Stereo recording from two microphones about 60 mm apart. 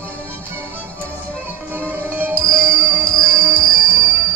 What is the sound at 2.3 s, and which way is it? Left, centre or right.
Music, left.